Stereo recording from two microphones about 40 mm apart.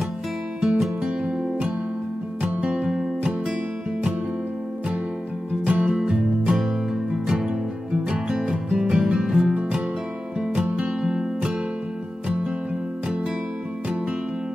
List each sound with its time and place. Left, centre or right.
0.6 s music: centre
2.6 s music: right
5.7 s music: right
6.0 s music: centre
7.3 s music: right
10.7 s music: right
11.0 s music: right